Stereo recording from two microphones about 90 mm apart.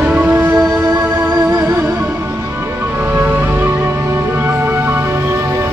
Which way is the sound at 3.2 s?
25° right (ahead or behind).